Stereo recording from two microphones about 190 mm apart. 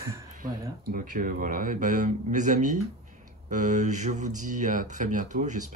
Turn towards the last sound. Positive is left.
turn(degrees=-40)  # may be behind; listen again after turning